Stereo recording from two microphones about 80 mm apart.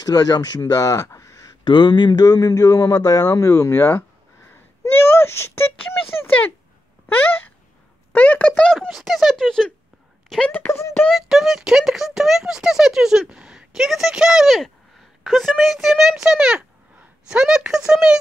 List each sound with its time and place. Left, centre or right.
0.0 s speech: left
1.6 s speech: left
5.2 s speech: left
8.1 s speech: left
8.9 s speech: centre
10.7 s speech: left
11.1 s speech: centre